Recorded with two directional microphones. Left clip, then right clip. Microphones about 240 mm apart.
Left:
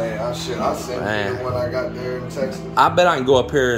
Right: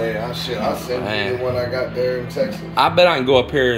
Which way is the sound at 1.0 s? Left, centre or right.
Centre.